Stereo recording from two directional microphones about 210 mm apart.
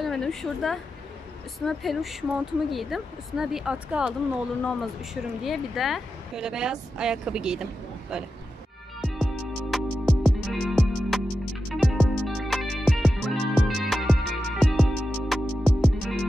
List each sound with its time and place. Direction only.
0.0 s a woman's voice: centre (ahead or behind)
9.0 s music: centre (ahead or behind)